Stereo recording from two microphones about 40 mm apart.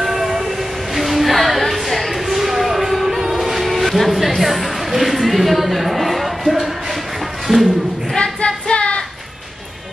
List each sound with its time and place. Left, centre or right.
0.0 s train: centre
0.9 s a sound: centre
8.5 s music: left